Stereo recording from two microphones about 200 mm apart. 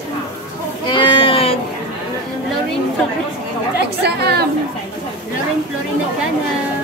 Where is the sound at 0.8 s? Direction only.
25° left (ahead or behind).